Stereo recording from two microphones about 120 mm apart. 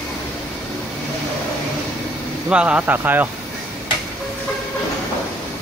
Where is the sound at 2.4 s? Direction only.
10° right (ahead or behind).